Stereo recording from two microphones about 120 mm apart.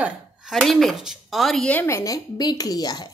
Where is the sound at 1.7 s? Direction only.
20° left (ahead or behind).